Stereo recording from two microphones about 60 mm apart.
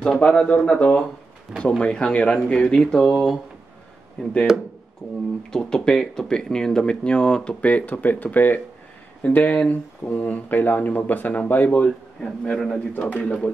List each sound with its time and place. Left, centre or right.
0.2 s speech: centre
5.0 s speech: centre
5.5 s speech: centre; by 11.8 s left
11.8 s speech: centre
12.9 s speech: left